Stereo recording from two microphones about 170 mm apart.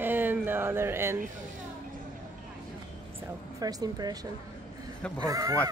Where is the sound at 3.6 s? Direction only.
20° right (ahead or behind).